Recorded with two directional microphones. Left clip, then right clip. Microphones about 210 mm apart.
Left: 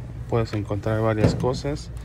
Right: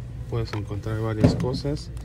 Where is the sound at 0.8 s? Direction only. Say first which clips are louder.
Left 8 dB; 15° right (ahead or behind).